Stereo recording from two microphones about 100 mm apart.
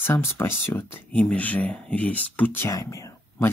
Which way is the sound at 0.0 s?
25° left (ahead or behind).